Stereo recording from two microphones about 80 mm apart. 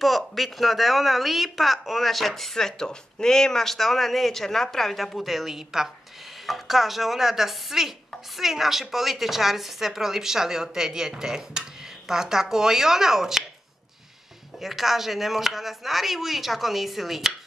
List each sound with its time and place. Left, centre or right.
0.0 s speech: centre
14.6 s speech: centre